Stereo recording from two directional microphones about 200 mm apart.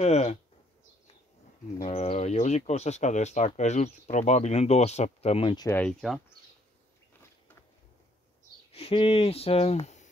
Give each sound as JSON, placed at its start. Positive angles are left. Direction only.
{"t": 0.0, "sound": "speech", "side_deg": 30}
{"t": 1.8, "sound": "speech", "side_deg": 30}
{"t": 5.7, "sound": "speech", "side_deg": 5}
{"t": 8.7, "sound": "speech", "side_deg": 30}